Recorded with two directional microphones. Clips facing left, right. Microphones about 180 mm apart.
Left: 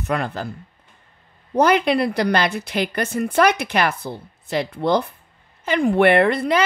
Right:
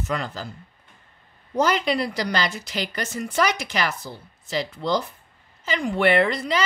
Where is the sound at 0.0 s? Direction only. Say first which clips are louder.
Left 5 dB; 60° left (ahead or behind).